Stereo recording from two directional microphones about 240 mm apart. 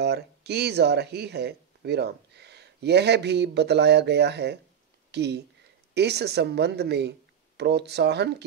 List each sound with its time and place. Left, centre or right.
0.0 s speech: right